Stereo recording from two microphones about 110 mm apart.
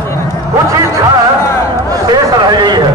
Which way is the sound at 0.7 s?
30° right (ahead or behind).